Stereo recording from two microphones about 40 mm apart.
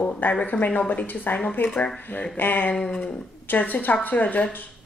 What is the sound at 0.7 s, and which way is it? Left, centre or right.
A woman's voice, left.